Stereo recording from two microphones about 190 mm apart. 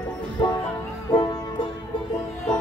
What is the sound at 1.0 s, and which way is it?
Music, 20° left (ahead or behind).